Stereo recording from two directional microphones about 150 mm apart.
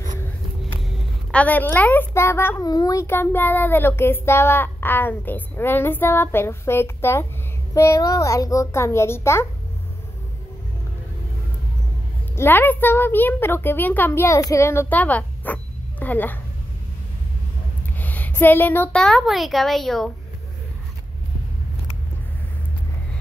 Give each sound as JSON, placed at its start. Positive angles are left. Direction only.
{"t": 0.7, "sound": "a woman's voice", "side_deg": 5}
{"t": 12.4, "sound": "a child's voice", "side_deg": 15}
{"t": 17.9, "sound": "a woman's voice", "side_deg": 10}